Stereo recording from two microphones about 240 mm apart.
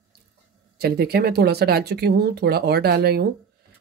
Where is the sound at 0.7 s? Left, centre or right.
Right.